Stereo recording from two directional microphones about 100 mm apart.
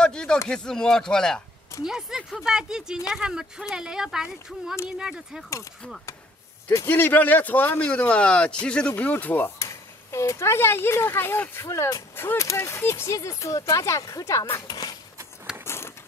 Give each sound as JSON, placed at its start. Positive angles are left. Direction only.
{"t": 0.0, "sound": "a sound", "side_deg": 10}
{"t": 0.5, "sound": "a man's voice", "side_deg": 5}
{"t": 1.9, "sound": "speech", "side_deg": -5}
{"t": 6.9, "sound": "a man's voice", "side_deg": 20}
{"t": 9.6, "sound": "speech", "side_deg": 30}
{"t": 11.6, "sound": "speech", "side_deg": 30}
{"t": 14.7, "sound": "speech", "side_deg": 40}
{"t": 15.6, "sound": "vehicle", "side_deg": 25}